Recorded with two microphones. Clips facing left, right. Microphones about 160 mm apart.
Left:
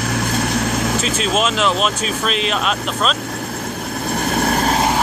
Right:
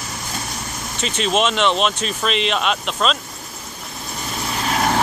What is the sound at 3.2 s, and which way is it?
Vehicle, 70° left (ahead or behind).